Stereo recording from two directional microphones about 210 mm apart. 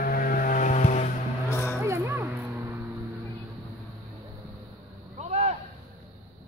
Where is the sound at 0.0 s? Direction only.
40° left (ahead or behind).